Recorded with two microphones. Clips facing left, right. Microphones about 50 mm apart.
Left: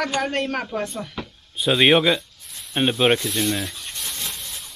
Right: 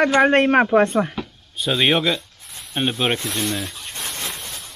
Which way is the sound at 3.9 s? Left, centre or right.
Right.